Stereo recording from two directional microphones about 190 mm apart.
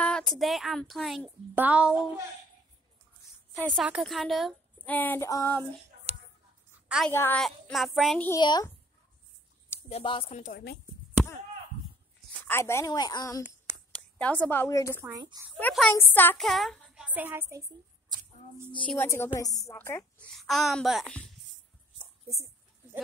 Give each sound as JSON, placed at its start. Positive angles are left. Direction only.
{"t": 0.0, "sound": "a woman's voice", "side_deg": 5}
{"t": 3.5, "sound": "speech", "side_deg": 5}
{"t": 6.1, "sound": "a sound", "side_deg": -35}
{"t": 7.1, "sound": "a woman's voice", "side_deg": 10}
{"t": 8.3, "sound": "speech", "side_deg": 20}
{"t": 9.8, "sound": "speech", "side_deg": 30}
{"t": 12.4, "sound": "speech", "side_deg": 15}
{"t": 13.9, "sound": "a woman's voice", "side_deg": 5}
{"t": 15.1, "sound": "speech", "side_deg": -20}
{"t": 15.5, "sound": "a woman's voice", "side_deg": 5}
{"t": 18.9, "sound": "a woman's voice", "side_deg": 10}
{"t": 21.9, "sound": "a sound", "side_deg": -15}